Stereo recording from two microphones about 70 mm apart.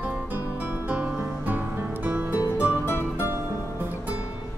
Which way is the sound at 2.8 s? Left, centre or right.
Left.